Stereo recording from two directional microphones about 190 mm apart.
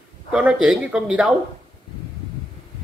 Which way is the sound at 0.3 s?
5° right (ahead or behind).